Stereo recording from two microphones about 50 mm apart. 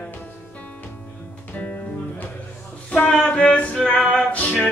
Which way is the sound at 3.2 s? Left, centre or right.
Left.